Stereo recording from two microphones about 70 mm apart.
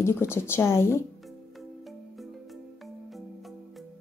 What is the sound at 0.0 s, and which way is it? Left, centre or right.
Speech, left.